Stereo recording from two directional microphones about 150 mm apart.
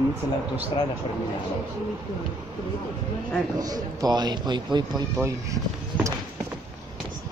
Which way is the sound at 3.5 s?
25° right (ahead or behind).